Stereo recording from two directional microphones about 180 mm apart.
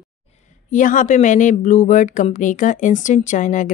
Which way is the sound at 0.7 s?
45° left (ahead or behind).